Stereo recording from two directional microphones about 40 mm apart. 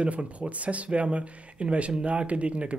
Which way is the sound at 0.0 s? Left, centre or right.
Right.